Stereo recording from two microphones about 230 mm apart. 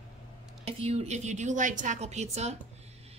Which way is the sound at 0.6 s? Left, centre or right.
Right.